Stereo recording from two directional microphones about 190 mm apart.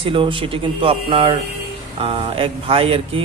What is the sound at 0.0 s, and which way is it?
Speech, 25° right (ahead or behind).